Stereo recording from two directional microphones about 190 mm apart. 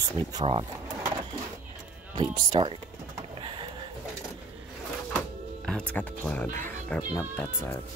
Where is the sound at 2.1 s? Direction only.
25° right (ahead or behind).